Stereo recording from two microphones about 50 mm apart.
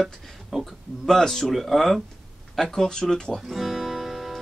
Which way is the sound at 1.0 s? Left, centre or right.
Centre.